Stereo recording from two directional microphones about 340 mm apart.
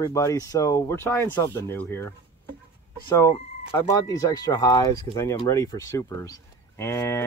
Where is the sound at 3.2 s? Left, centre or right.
Centre.